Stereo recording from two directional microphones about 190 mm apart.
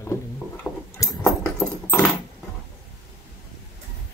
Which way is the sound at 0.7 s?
Centre (ahead or behind).